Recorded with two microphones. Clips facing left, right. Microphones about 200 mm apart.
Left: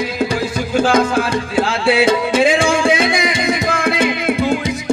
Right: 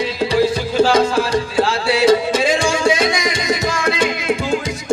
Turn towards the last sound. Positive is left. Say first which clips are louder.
# left 2 dB
turn(degrees=55)  # may be behind; listen again after turning